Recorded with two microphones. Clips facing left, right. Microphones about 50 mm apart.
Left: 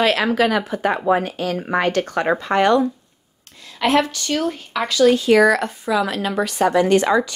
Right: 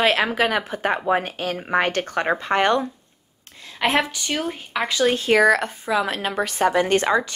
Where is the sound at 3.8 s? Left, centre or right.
Centre.